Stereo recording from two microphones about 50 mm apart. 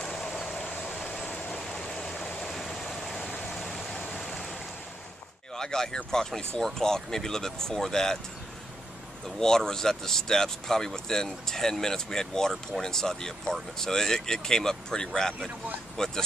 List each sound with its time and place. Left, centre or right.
0.0 s a sound: centre
0.6 s vehicle: left
1.0 s train: centre
1.6 s stream: centre
3.3 s vehicle: left
3.5 s vehicle: centre
4.1 s stream: centre
5.6 s speech: centre
9.4 s speech: centre